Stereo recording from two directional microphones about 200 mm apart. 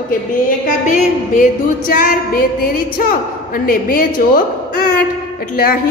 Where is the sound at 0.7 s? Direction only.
40° left (ahead or behind).